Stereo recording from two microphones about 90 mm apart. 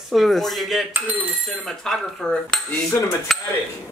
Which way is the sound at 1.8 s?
5° left (ahead or behind).